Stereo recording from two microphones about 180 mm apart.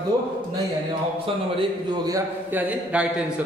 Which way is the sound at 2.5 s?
10° right (ahead or behind).